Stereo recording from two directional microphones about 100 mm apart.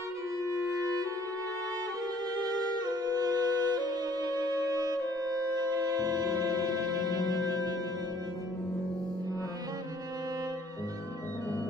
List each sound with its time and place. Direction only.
2.9 s music: 40° right (ahead or behind)